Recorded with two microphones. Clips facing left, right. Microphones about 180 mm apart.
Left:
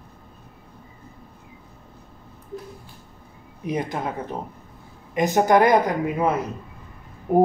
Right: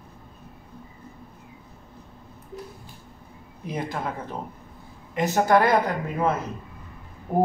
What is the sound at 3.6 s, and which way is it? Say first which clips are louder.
Speech: left 3 dB; 20° left (ahead or behind).